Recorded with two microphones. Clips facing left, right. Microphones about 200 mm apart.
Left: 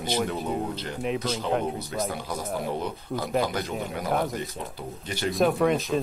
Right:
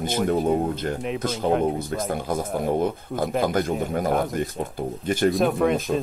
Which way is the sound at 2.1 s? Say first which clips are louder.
Right 6 dB; 50° right (ahead or behind).